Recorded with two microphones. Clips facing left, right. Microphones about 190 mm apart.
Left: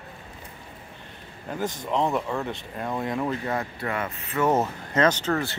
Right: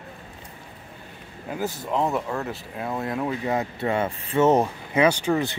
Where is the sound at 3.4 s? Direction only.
20° right (ahead or behind).